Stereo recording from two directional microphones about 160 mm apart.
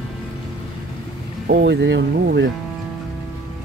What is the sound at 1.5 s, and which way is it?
Speech, 90° right.